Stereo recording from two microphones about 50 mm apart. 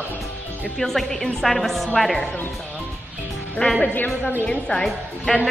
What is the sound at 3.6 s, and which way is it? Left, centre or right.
Speech, left.